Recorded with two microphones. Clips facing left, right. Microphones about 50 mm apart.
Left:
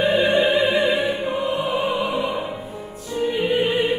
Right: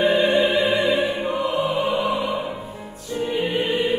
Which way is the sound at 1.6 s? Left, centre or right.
Left.